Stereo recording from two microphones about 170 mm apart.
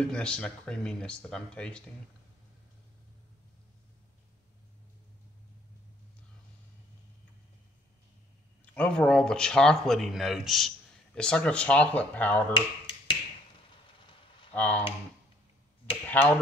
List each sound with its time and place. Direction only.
0.0 s speech: 5° left (ahead or behind)
8.7 s speech: 5° left (ahead or behind)
12.5 s finger snapping: 30° left (ahead or behind)
13.9 s a sound: 30° left (ahead or behind)
14.5 s speech: 10° left (ahead or behind)
16.1 s speech: 10° left (ahead or behind)